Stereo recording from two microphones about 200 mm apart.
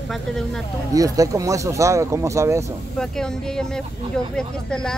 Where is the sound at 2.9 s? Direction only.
5° left (ahead or behind).